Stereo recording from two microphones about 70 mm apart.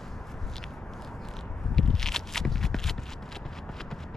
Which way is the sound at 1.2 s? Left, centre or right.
Centre.